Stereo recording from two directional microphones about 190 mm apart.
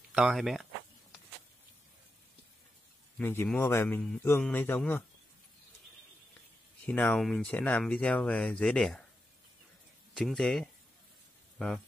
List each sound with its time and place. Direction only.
0.1 s speech: 5° right (ahead or behind)
3.2 s a man's voice: 10° left (ahead or behind)
6.9 s speech: 5° left (ahead or behind)
10.1 s speech: centre (ahead or behind)
11.5 s a sound: centre (ahead or behind)